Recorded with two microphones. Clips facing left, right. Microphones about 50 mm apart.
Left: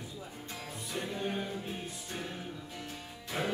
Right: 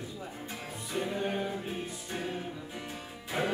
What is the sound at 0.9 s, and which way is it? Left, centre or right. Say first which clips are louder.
Music: right 4 dB; centre.